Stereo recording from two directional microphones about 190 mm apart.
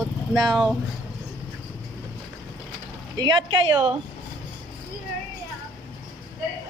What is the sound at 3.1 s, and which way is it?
Speech, 20° right (ahead or behind).